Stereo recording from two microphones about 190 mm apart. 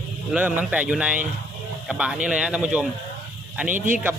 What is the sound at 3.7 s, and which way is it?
Speech, 45° right (ahead or behind).